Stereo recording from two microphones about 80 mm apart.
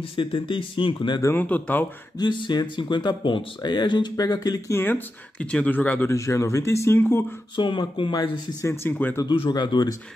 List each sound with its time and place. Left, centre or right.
0.2 s speech: left
1.3 s speech: left
2.1 s speech: left
4.7 s speech: left
6.1 s speech: left
7.0 s speech: left
7.5 s speech: left
8.0 s speech: left
8.6 s speech: left
9.3 s speech: left